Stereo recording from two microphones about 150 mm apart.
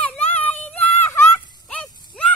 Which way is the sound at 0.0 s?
10° left (ahead or behind).